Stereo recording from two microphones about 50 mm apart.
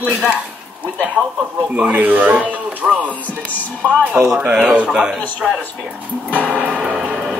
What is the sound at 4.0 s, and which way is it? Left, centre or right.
Speech, right.